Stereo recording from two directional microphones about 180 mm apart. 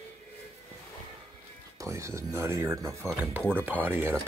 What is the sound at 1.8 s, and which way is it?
Speech, 15° right (ahead or behind).